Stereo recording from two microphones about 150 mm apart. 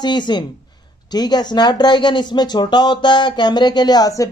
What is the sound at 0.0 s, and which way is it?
Speech, 30° left (ahead or behind).